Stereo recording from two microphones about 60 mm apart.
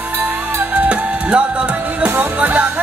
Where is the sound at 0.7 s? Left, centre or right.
Right.